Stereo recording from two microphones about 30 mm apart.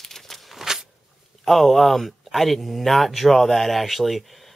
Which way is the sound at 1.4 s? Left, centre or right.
Centre.